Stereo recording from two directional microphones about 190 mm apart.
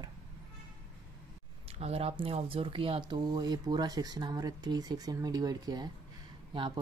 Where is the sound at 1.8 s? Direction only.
35° right (ahead or behind).